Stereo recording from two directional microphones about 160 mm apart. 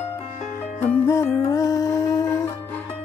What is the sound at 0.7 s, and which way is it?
Music, 15° left (ahead or behind).